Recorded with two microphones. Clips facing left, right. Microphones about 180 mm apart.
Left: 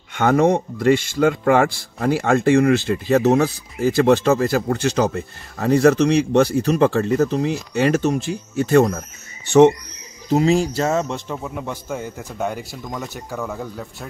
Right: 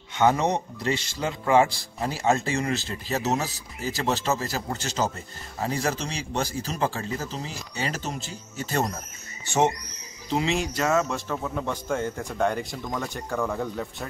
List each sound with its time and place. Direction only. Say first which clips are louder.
0.2 s a man's voice: left 6 dB; 55° left (ahead or behind)
10.3 s a man's voice: left 9 dB; 40° left (ahead or behind); by 14.0 s centre (ahead or behind)